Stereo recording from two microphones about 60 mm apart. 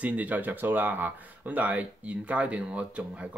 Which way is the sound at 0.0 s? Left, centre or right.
Right.